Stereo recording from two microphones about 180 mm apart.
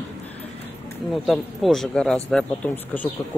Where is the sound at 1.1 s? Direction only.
Centre (ahead or behind).